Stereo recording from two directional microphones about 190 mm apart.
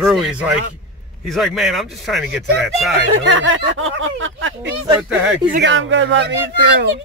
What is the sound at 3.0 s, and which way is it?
A child's voice, 85° right.